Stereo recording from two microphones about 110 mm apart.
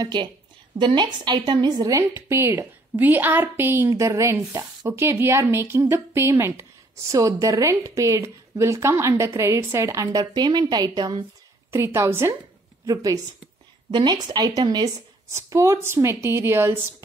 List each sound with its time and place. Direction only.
0.0 s a woman's voice: 45° right (ahead or behind)
10.1 s a woman's voice: 40° right (ahead or behind)
11.7 s a woman's voice: 25° right (ahead or behind)
15.3 s a woman's voice: 25° right (ahead or behind)